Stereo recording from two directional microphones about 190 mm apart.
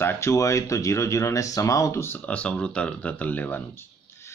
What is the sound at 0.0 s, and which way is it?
Speech, 15° left (ahead or behind).